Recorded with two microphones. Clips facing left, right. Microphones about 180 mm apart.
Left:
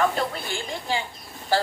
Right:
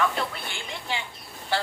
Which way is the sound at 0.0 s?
40° left (ahead or behind).